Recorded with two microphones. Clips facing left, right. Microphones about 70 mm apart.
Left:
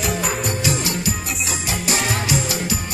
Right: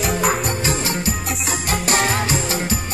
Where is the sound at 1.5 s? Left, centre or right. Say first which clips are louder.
Right 4 dB; right.